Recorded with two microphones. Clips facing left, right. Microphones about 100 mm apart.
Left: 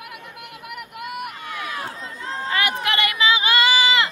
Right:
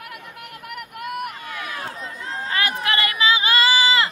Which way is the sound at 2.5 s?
35° right (ahead or behind).